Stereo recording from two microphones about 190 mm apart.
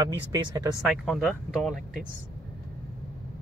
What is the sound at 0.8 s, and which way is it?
Speech, centre (ahead or behind).